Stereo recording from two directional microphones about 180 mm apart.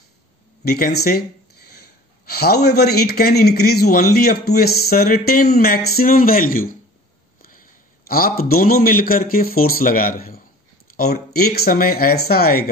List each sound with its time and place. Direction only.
0.7 s speech: 60° left (ahead or behind)
8.1 s speech: 55° left (ahead or behind)